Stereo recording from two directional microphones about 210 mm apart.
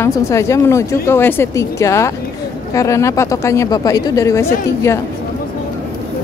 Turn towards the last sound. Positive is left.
turn(degrees=15)  # may be behind; listen again after turning